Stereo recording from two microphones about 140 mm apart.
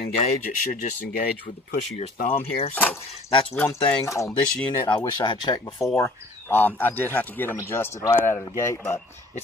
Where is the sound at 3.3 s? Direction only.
40° left (ahead or behind).